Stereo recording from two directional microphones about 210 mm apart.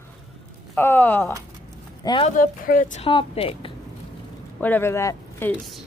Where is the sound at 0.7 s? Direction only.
10° left (ahead or behind).